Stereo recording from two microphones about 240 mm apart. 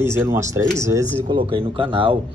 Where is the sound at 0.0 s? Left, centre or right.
Centre.